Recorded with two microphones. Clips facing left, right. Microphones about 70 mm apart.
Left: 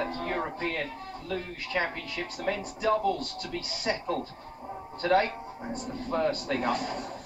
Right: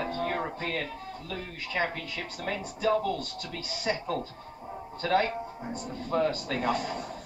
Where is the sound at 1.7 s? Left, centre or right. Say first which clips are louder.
Even; centre.